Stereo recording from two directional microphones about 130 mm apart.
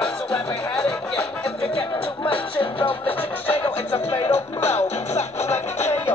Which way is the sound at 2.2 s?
40° left (ahead or behind).